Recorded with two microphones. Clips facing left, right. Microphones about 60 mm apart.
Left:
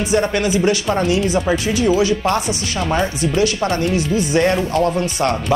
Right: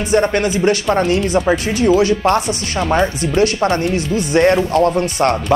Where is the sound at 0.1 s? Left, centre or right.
Right.